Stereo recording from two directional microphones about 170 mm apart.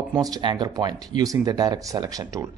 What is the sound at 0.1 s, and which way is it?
A man's voice, 25° right (ahead or behind).